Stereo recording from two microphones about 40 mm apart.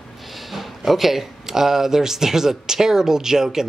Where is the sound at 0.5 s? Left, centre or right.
Centre.